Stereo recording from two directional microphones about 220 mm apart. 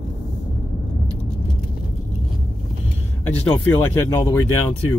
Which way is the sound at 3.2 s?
5° left (ahead or behind).